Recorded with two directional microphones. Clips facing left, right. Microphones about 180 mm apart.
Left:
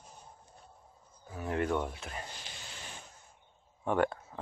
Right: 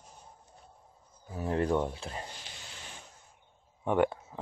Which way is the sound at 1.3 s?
30° right (ahead or behind).